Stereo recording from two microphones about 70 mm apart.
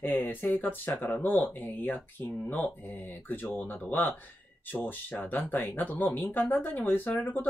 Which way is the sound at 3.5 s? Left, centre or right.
Left.